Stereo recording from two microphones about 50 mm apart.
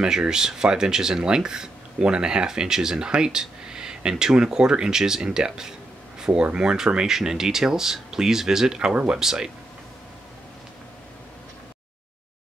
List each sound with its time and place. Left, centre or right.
0.0 s speech: centre
6.1 s a sound: centre
6.4 s speech: centre
9.2 s speech: centre